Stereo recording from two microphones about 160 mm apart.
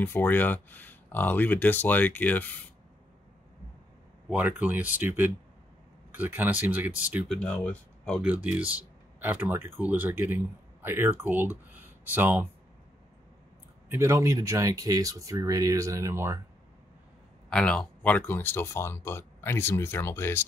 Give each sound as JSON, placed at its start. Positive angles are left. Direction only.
{"t": 0.0, "sound": "speech", "side_deg": 10}
{"t": 4.3, "sound": "speech", "side_deg": -10}
{"t": 7.2, "sound": "speech", "side_deg": 5}
{"t": 8.2, "sound": "speech", "side_deg": -10}
{"t": 13.8, "sound": "speech", "side_deg": -15}
{"t": 17.5, "sound": "speech", "side_deg": 5}